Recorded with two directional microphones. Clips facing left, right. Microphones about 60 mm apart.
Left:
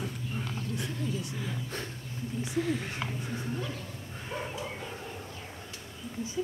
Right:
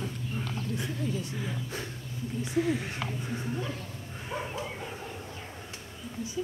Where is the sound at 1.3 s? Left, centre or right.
Centre.